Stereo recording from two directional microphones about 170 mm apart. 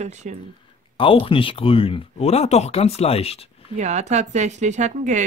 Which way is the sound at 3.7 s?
40° right (ahead or behind).